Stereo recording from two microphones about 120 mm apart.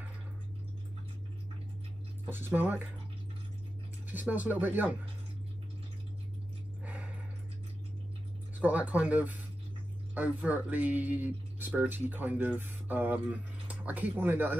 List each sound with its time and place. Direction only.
2.2 s speech: 15° right (ahead or behind)
4.1 s speech: 15° right (ahead or behind)
6.8 s a sound: 10° right (ahead or behind)
8.5 s speech: 10° right (ahead or behind)